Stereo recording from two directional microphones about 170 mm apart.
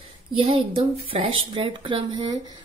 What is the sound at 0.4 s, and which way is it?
A woman's voice, 35° right (ahead or behind).